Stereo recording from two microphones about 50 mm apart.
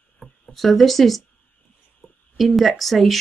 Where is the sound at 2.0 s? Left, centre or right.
Left.